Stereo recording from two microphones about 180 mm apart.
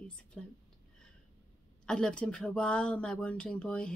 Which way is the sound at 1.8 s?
5° left (ahead or behind).